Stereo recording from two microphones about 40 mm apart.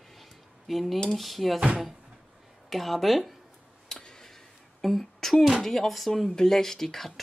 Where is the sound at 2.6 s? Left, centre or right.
Centre.